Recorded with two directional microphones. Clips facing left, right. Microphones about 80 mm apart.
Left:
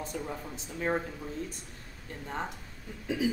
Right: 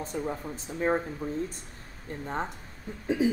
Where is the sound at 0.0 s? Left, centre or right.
Right.